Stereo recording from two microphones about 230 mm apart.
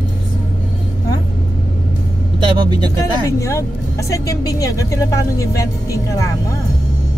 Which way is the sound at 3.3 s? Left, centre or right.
Centre.